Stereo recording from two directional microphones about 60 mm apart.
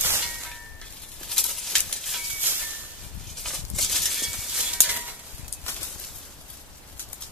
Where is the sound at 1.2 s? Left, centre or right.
Centre.